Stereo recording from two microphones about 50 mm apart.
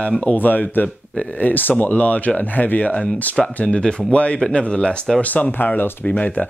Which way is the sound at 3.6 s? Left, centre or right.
Centre.